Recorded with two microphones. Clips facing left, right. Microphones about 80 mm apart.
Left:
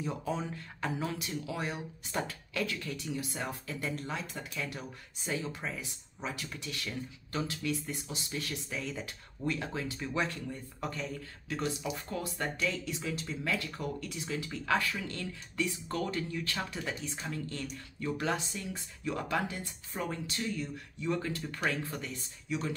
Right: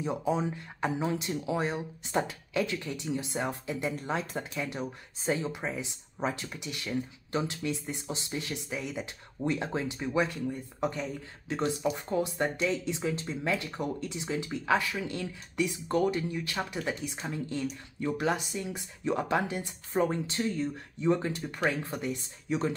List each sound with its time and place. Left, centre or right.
0.0 s speech: centre
10.2 s speech: centre
10.8 s speech: right
22.5 s speech: right